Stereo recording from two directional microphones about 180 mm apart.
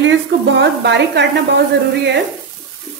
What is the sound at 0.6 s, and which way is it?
Speech, 75° right (ahead or behind).